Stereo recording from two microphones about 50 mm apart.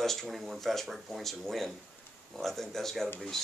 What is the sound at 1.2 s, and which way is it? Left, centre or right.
Speech, centre.